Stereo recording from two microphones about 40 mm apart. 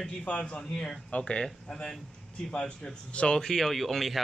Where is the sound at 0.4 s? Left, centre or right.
Left.